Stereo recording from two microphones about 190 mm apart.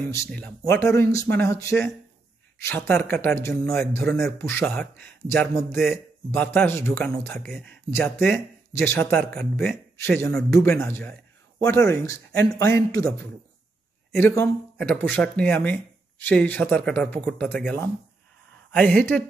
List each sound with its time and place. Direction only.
0.3 s speech: 5° left (ahead or behind)